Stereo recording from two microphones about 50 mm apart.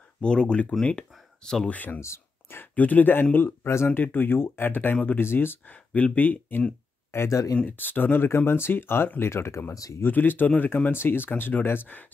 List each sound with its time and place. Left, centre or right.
0.2 s speech: centre
1.7 s speech: left
2.0 s a sound: left
2.6 s speech: left
3.4 s speech: left
3.9 s speech: left
5.7 s speech: left
7.1 s speech: left
7.5 s speech: left
9.2 s speech: left
10.0 s speech: left